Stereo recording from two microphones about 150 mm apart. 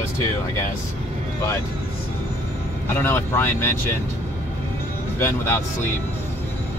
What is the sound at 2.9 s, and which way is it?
Speech, 15° left (ahead or behind).